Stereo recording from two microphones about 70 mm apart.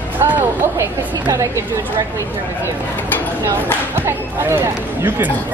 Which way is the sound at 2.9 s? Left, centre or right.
Left.